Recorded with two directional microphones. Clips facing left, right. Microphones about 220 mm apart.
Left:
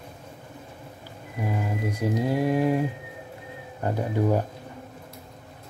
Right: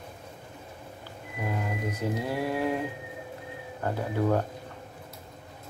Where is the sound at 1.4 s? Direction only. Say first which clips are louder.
Left 3 dB; 10° left (ahead or behind).